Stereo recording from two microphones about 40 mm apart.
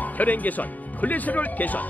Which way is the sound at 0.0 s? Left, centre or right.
Left.